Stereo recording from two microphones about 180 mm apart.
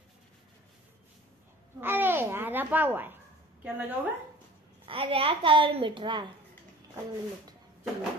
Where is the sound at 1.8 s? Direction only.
10° right (ahead or behind).